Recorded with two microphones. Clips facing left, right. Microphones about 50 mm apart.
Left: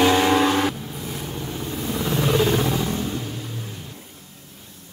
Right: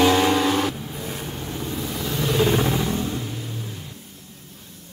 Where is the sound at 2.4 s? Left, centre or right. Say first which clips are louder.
Even; centre.